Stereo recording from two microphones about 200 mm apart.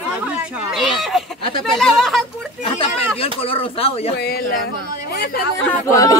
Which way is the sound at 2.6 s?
30° left (ahead or behind).